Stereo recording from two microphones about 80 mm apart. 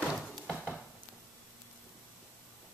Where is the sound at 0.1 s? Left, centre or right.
Centre.